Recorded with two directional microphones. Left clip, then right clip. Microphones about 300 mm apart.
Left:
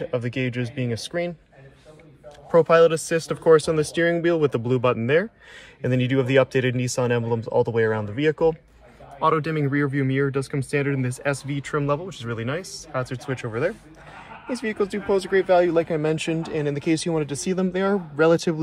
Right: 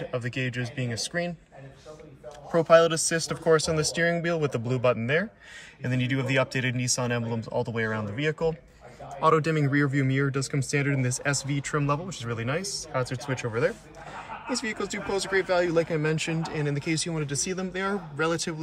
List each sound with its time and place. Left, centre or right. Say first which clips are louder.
0.1 s a man's voice: left 5 dB; centre
2.5 s a man's voice: left 4 dB; centre